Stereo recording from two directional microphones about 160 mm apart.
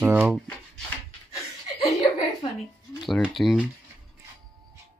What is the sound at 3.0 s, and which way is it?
Speech, centre (ahead or behind).